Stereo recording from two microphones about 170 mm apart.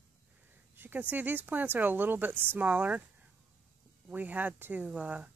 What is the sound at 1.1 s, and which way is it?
Speech, 10° right (ahead or behind).